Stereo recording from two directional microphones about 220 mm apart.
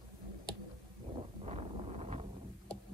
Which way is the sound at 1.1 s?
25° right (ahead or behind).